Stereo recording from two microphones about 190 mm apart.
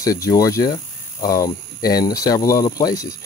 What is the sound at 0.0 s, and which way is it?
Speech, 20° left (ahead or behind).